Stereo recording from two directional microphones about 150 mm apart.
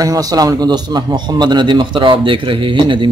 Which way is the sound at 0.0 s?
25° right (ahead or behind).